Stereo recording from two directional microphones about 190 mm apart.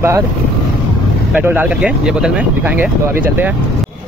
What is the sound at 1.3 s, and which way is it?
Speech, 10° right (ahead or behind).